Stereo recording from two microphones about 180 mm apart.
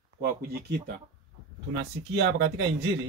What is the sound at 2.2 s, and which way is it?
Speech, 70° right (ahead or behind).